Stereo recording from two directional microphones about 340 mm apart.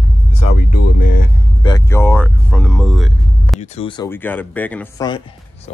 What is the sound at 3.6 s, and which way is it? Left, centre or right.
Speech, centre.